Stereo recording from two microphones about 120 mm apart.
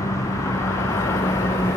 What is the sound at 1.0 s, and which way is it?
Vehicle, 25° left (ahead or behind).